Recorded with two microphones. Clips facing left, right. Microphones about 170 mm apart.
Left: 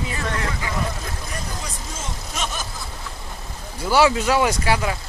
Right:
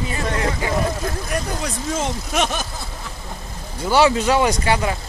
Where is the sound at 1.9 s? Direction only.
70° right (ahead or behind).